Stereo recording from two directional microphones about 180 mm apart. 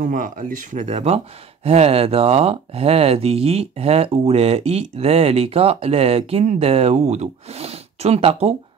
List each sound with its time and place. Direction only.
0.0 s speech: 45° right (ahead or behind)